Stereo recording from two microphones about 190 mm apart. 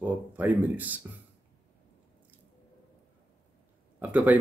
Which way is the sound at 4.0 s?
10° right (ahead or behind).